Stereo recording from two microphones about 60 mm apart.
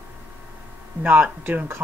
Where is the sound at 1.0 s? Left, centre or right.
Right.